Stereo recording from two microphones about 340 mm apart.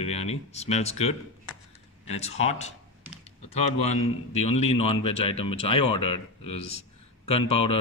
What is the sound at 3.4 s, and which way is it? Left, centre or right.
Speech, left.